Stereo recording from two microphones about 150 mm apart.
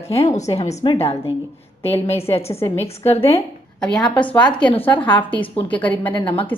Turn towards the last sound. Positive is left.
turn(degrees=35)  # may be behind; listen again after turning